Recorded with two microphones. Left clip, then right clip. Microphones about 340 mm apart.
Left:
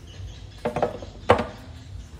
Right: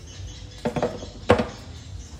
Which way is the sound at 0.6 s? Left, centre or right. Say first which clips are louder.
Left 1 dB; centre.